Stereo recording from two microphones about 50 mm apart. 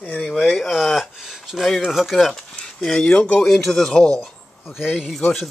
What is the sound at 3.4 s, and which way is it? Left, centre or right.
Speech, centre.